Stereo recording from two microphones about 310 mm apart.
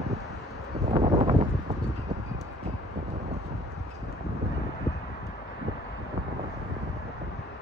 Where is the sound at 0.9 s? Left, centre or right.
Centre.